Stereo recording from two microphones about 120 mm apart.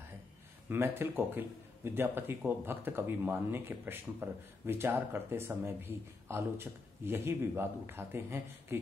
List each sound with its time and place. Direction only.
0.7 s speech: 20° right (ahead or behind)